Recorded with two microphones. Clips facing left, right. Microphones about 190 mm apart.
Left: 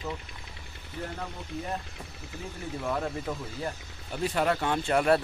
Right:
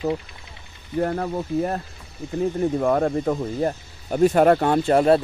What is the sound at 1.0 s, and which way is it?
Speech, 60° right (ahead or behind).